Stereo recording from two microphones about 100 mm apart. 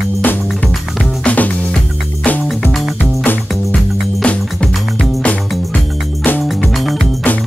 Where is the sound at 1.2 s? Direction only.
15° left (ahead or behind).